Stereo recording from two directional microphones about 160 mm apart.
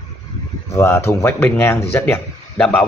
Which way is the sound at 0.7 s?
15° left (ahead or behind).